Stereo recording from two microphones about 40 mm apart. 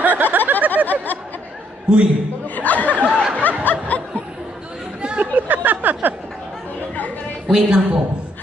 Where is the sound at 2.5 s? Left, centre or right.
Left.